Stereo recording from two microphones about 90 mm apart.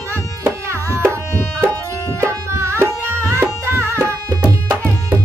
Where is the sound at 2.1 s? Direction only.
30° right (ahead or behind).